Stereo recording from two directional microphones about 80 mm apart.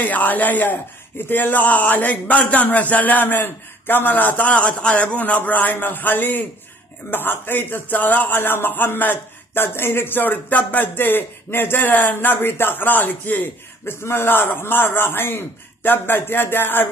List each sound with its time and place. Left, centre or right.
0.0 s speech: left